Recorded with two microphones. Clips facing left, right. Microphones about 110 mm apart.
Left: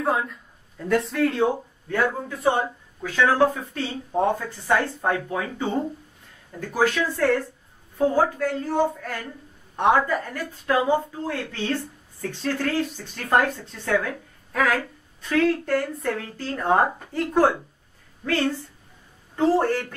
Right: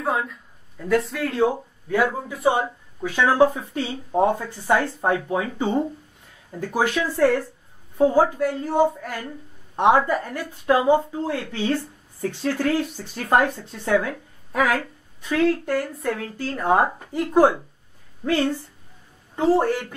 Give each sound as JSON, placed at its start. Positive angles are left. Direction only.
{"t": 0.0, "sound": "speech", "side_deg": 0}